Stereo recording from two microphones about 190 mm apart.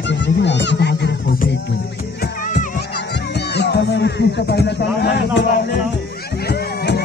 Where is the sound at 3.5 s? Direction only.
60° left (ahead or behind).